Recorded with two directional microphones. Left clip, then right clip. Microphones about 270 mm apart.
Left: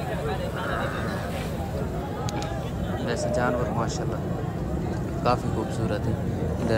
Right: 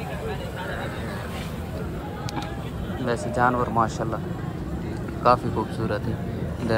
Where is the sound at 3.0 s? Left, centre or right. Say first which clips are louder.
Right 3 dB; centre.